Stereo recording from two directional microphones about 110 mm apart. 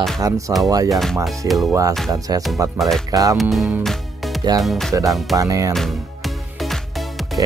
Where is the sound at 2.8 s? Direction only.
Centre (ahead or behind).